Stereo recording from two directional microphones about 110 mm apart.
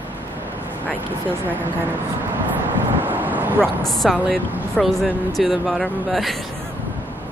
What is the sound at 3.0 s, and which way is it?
Vehicle, 15° right (ahead or behind).